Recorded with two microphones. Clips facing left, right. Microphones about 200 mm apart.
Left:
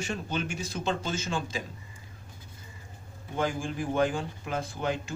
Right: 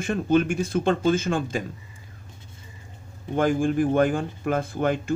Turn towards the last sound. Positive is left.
turn(degrees=-50)  # may be behind; listen again after turning